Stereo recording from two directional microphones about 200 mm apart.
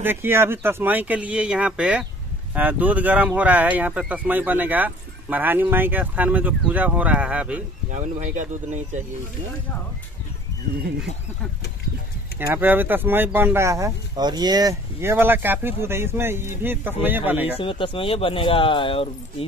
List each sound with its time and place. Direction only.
0.0 s speech: 10° right (ahead or behind)
7.9 s speech: 35° right (ahead or behind)
12.4 s speech: 10° right (ahead or behind)
17.6 s speech: 25° left (ahead or behind)